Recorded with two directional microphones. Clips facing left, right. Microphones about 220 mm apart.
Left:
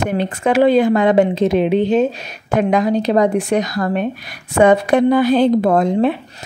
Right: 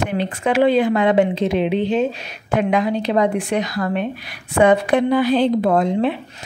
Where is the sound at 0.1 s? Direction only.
45° left (ahead or behind).